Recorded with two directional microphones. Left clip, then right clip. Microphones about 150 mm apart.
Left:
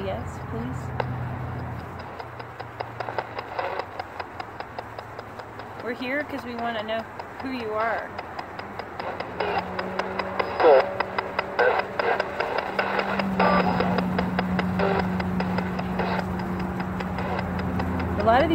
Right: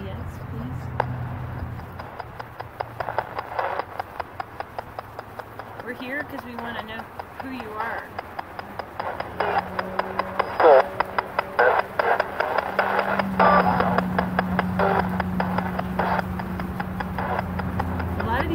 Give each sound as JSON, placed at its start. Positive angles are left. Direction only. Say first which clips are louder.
{"t": 2.8, "sound": "a sound", "louder": "right 3 dB", "side_deg": -40}
{"t": 5.9, "sound": "speech", "louder": "left 3 dB", "side_deg": -45}
{"t": 7.5, "sound": "clip-clop", "louder": "left 4 dB", "side_deg": -40}